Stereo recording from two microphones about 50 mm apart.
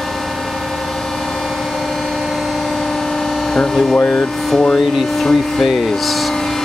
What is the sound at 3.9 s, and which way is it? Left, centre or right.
Speech, left.